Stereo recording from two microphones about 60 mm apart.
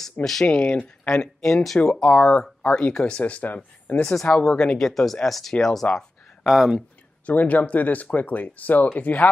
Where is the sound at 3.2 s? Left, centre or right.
Left.